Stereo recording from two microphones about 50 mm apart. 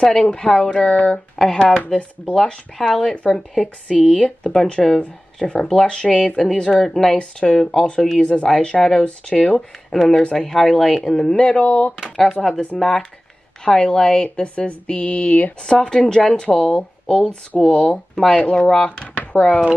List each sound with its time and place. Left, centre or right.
0.0 s speech: centre
0.7 s speech: left
2.4 s speech: centre
7.2 s speech: left
9.8 s speech: centre
10.7 s speech: centre
15.6 s speech: centre
17.9 s speech: centre
18.4 s speech: left